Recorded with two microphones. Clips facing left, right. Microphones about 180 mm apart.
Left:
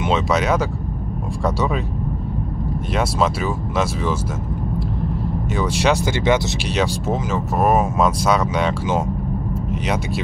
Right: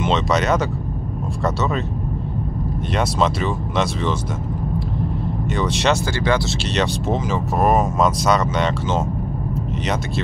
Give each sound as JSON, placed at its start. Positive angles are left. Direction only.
{"t": 0.0, "sound": "speech", "side_deg": 5}
{"t": 2.9, "sound": "speech", "side_deg": 5}
{"t": 5.5, "sound": "speech", "side_deg": 10}
{"t": 6.2, "sound": "speech", "side_deg": 20}
{"t": 6.7, "sound": "speech", "side_deg": 5}